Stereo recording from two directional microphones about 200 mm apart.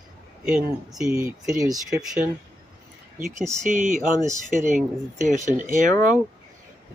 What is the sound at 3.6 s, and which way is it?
Speech, 40° right (ahead or behind).